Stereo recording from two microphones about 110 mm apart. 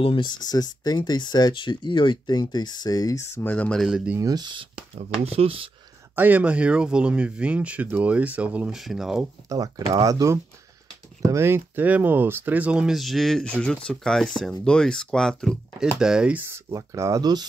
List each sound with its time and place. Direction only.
0.0 s speech: 50° left (ahead or behind); by 3.5 s 25° left (ahead or behind)
3.5 s speech: 10° left (ahead or behind)
3.8 s speech: 10° right (ahead or behind)
4.2 s speech: 35° right (ahead or behind)
5.2 s speech: 65° right (ahead or behind)
6.1 s speech: 15° right (ahead or behind)
9.5 s speech: 35° right (ahead or behind); by 15.9 s 5° left (ahead or behind)
16.0 s speech: 5° right (ahead or behind); by 17.5 s 40° right (ahead or behind)